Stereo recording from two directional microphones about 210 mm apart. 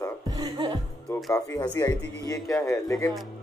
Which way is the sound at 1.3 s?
15° left (ahead or behind).